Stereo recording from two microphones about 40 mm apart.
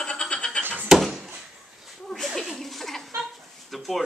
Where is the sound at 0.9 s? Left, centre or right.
Centre.